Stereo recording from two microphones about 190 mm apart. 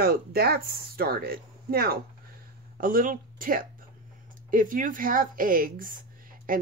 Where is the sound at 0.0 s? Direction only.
55° right (ahead or behind).